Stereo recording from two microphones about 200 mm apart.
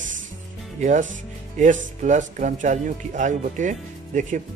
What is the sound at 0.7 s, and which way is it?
Speech, 40° right (ahead or behind).